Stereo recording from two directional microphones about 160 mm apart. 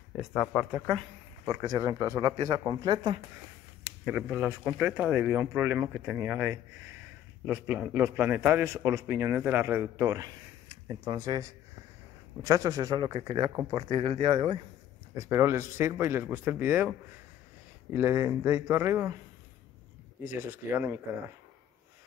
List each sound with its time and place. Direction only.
0.2 s a man's voice: centre (ahead or behind)
0.8 s speech: 30° right (ahead or behind)
4.0 s a man's voice: 5° right (ahead or behind); by 11.4 s 25° right (ahead or behind)
12.4 s speech: 20° right (ahead or behind)
15.1 s a man's voice: 15° right (ahead or behind)
17.9 s a man's voice: 15° right (ahead or behind)
20.2 s a man's voice: 15° right (ahead or behind)